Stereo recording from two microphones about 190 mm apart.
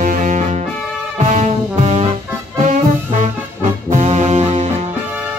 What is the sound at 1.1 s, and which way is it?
Brass instrument, 35° right (ahead or behind).